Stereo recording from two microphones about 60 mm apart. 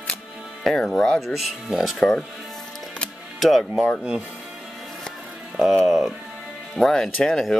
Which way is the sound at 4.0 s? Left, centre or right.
Centre.